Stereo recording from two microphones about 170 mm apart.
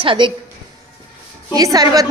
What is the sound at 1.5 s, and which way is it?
Speech, 20° right (ahead or behind).